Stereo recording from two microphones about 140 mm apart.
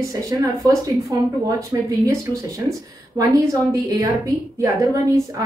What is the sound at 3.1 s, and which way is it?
A woman's voice, 25° right (ahead or behind).